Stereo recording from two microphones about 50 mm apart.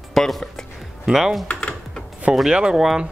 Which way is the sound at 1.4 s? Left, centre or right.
Left.